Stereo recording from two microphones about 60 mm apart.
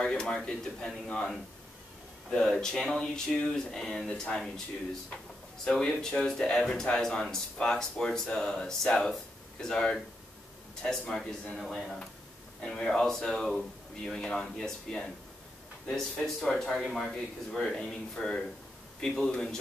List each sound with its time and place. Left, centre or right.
0.0 s speech: centre
2.5 s speech: centre
5.7 s speech: centre
12.6 s speech: centre